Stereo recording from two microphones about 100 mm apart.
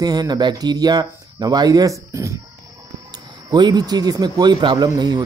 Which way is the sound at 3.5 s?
45° right (ahead or behind).